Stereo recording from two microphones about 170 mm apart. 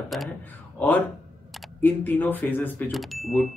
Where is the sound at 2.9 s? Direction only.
Centre (ahead or behind).